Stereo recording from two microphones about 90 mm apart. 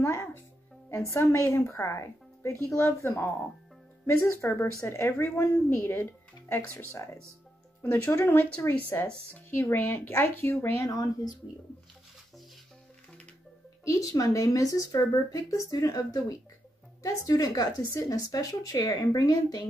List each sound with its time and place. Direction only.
0.0 s music: 30° left (ahead or behind)
0.8 s a woman's voice: 35° left (ahead or behind)
10.9 s speech: 45° left (ahead or behind)
13.8 s speech: 40° left (ahead or behind)